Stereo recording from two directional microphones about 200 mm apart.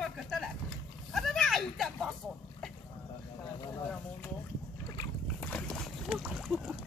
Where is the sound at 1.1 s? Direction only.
Centre (ahead or behind).